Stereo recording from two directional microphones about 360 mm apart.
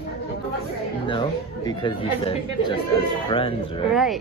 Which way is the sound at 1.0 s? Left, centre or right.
Centre.